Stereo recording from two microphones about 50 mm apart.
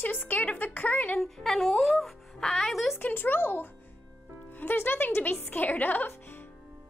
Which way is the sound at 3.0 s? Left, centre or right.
Left.